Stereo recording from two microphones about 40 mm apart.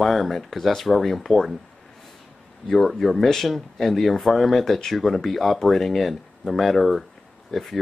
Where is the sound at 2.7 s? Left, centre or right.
Centre.